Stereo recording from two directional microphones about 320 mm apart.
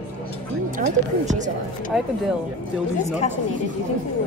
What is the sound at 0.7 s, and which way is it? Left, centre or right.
Speech, right.